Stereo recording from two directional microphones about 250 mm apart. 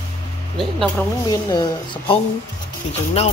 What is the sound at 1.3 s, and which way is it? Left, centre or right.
Speech, centre.